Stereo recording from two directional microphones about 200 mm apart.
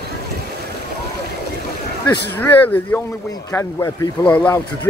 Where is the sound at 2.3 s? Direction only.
10° left (ahead or behind).